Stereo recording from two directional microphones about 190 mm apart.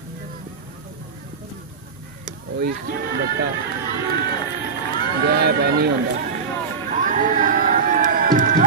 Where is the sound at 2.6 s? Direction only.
55° right (ahead or behind).